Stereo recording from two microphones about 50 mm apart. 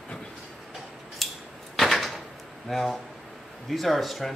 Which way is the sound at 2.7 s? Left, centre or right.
Centre.